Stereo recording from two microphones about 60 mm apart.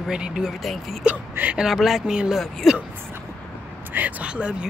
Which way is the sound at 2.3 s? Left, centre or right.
Centre.